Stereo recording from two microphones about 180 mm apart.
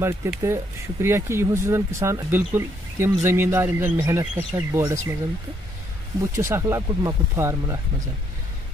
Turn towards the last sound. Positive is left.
turn(degrees=-15)  # may be behind; listen again after turning